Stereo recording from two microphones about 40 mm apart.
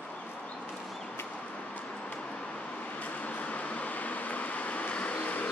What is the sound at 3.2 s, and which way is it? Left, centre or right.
Vehicle, left.